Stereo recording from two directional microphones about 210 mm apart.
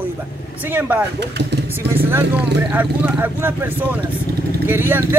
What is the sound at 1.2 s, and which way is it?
Speech, 50° right (ahead or behind).